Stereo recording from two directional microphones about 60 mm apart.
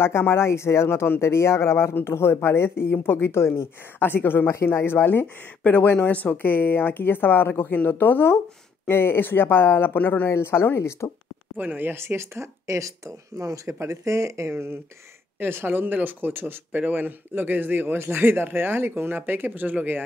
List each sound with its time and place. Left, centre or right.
0.0 s speech: left
5.2 s speech: left
10.3 s speech: left
11.5 s speech: right
14.5 s speech: right